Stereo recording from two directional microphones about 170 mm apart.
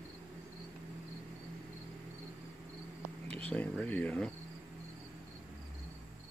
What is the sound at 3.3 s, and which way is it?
Speech, 10° left (ahead or behind).